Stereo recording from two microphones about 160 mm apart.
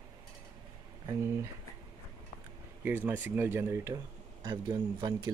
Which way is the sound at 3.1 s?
10° right (ahead or behind).